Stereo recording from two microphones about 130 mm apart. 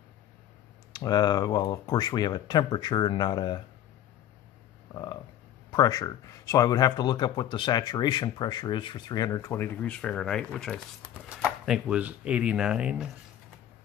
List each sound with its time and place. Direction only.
0.9 s speech: 30° left (ahead or behind)
4.9 s a sound: 30° left (ahead or behind)
5.7 s speech: 30° left (ahead or behind); by 13.1 s 5° right (ahead or behind)